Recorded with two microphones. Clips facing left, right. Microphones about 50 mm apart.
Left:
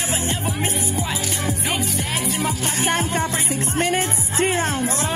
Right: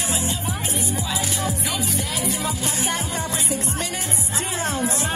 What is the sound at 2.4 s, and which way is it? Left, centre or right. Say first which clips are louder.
Music: left 3 dB; left.